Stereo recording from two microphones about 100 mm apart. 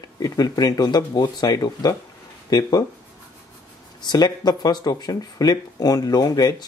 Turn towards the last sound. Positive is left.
turn(degrees=40)  # may be behind; listen again after turning